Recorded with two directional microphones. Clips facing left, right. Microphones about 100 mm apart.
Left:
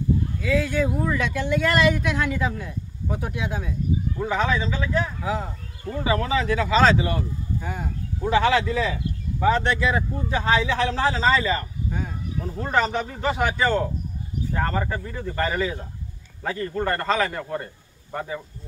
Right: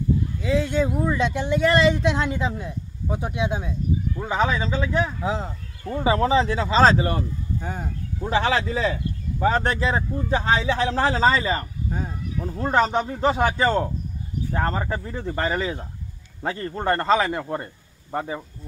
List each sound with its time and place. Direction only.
0.4 s speech: 25° right (ahead or behind)
8.3 s speech: 35° right (ahead or behind)